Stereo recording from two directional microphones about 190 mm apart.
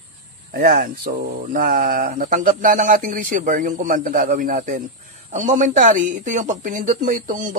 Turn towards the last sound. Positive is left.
turn(degrees=-40)  # may be behind; listen again after turning